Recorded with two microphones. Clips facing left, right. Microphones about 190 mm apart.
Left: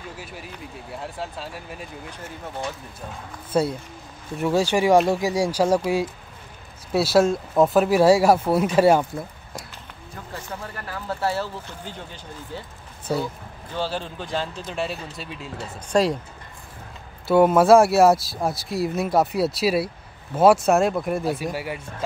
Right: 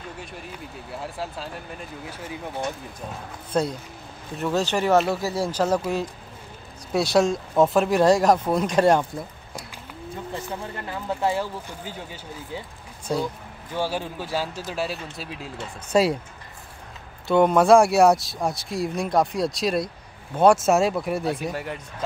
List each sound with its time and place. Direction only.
0.2 s speech: 5° left (ahead or behind)
3.5 s speech: 5° left (ahead or behind)
6.9 s speech: 5° left (ahead or behind)
10.3 s speech: 20° right (ahead or behind)
13.7 s speech: 10° right (ahead or behind)
17.3 s speech: 5° left (ahead or behind)